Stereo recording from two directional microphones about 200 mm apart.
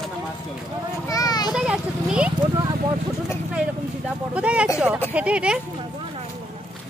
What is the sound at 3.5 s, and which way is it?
Speech, 5° right (ahead or behind).